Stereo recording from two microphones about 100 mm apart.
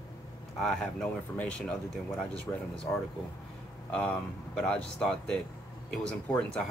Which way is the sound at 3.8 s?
10° left (ahead or behind).